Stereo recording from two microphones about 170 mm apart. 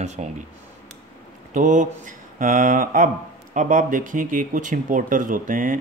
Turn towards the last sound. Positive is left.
turn(degrees=-50)  # may be behind; listen again after turning